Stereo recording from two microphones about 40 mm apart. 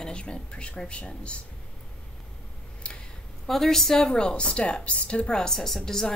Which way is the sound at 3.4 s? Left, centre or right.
Centre.